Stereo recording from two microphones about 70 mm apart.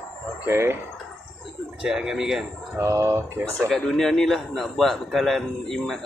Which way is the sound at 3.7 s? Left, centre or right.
Centre.